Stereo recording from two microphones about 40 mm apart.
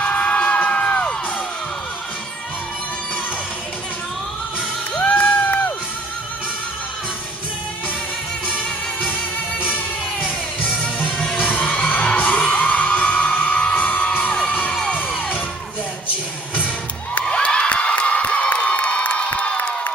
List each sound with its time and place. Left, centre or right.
0.0 s music: left
4.6 s music: left
8.5 s music: left
10.6 s music: left
11.3 s music: left
14.3 s crowd: left
16.5 s music: left
17.4 s crowd: left